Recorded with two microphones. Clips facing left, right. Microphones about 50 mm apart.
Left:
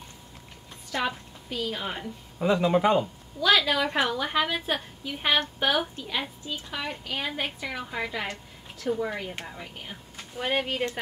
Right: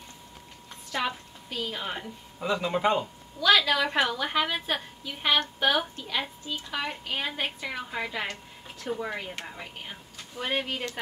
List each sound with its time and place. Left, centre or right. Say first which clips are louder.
0.9 s a woman's voice: left 1 dB; centre
2.3 s speech: left 5 dB; left
2.6 s a woman's voice: left 3 dB; centre
10.3 s a woman's voice: left 2 dB; centre